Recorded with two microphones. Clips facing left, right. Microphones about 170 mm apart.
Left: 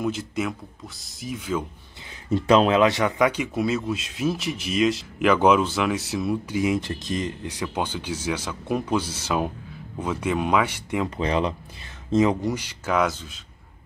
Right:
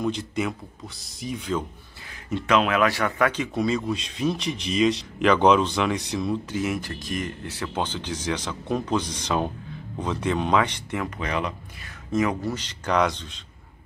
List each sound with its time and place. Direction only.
0.0 s speech: 5° left (ahead or behind)
2.2 s speech: 30° left (ahead or behind); by 11.1 s 10° left (ahead or behind)
11.1 s speech: 30° left (ahead or behind)
12.5 s speech: 10° left (ahead or behind)